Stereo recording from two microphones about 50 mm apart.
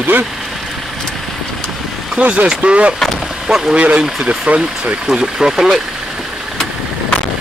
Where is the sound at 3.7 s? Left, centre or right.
Right.